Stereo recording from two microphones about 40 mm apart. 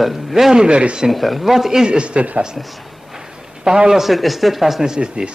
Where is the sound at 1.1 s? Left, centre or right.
Centre.